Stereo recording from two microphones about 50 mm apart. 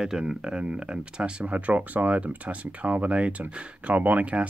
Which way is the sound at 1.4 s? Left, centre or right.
Right.